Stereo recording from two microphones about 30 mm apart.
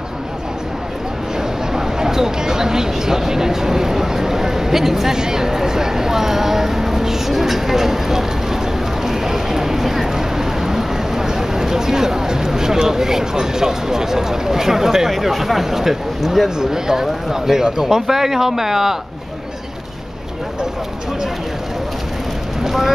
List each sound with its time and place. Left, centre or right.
1.7 s speech: centre
5.1 s speech: right
15.0 s speech: centre
22.6 s speech: centre